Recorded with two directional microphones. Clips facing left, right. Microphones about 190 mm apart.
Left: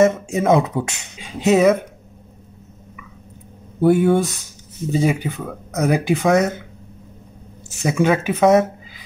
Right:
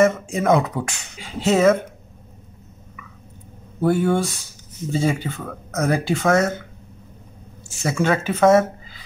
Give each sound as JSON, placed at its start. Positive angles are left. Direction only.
{"t": 0.0, "sound": "speech", "side_deg": 25}
{"t": 3.8, "sound": "speech", "side_deg": 20}
{"t": 7.8, "sound": "speech", "side_deg": 15}